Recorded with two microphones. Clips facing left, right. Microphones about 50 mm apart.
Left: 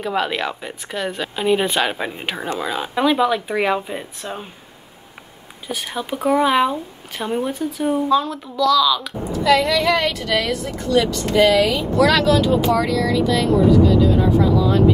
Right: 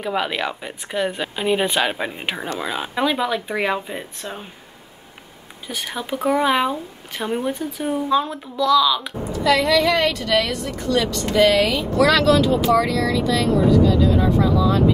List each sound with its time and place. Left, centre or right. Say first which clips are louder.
0.0 s speech: left 1 dB; centre
5.7 s speech: left 1 dB; centre
8.1 s speech: left 2 dB; centre
9.4 s speech: left 1 dB; centre
12.7 s vehicle: even; centre